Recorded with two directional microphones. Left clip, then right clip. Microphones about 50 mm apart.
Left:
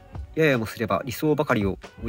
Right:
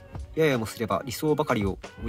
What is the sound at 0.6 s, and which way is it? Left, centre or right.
Speech, right.